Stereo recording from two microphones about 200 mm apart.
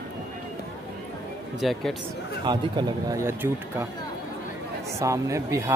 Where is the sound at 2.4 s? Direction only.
20° right (ahead or behind).